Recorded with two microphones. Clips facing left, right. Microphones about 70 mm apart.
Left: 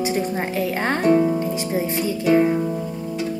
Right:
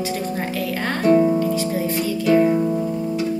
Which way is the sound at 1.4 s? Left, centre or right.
Left.